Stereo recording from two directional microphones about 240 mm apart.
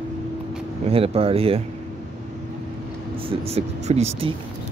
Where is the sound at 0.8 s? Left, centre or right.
Right.